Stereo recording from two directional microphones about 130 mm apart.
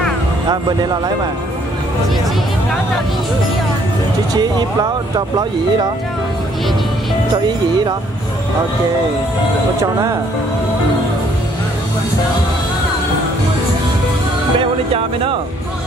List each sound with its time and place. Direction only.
4.4 s speech: 30° right (ahead or behind)
9.8 s speech: 25° right (ahead or behind)